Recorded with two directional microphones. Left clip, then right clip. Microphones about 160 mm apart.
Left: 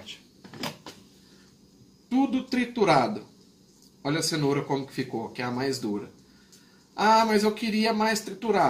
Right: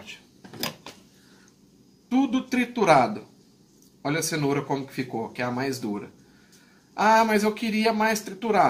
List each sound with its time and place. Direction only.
2.0 s speech: 10° right (ahead or behind)